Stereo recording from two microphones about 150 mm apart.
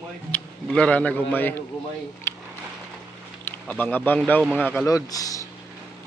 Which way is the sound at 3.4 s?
10° left (ahead or behind).